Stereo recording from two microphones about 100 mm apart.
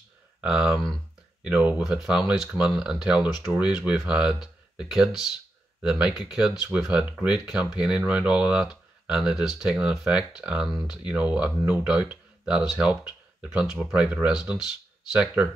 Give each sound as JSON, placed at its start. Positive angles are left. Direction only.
{"t": 0.4, "sound": "speech", "side_deg": -5}